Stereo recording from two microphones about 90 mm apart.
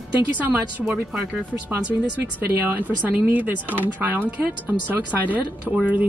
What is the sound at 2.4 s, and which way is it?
Speech, 20° right (ahead or behind).